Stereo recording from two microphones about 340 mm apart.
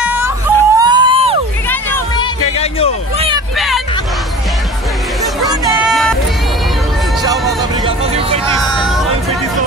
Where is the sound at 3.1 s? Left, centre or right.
Centre.